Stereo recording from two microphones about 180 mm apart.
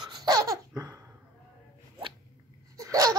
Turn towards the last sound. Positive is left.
turn(degrees=-20)  # may be behind; listen again after turning